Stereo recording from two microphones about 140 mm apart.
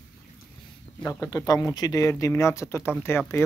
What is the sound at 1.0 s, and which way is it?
Speech, 25° left (ahead or behind).